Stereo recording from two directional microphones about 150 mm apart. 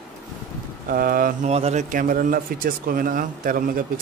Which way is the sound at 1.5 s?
50° right (ahead or behind).